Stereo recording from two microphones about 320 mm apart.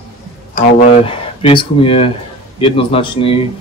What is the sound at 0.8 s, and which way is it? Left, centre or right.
Speech, centre.